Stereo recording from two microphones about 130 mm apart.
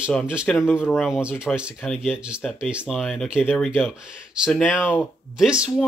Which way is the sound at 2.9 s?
5° left (ahead or behind).